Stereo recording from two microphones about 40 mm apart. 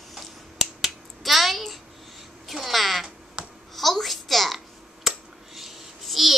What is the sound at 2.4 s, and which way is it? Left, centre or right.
Babbling, centre.